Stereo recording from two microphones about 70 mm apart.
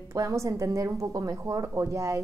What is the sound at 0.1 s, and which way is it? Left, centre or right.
Speech, right.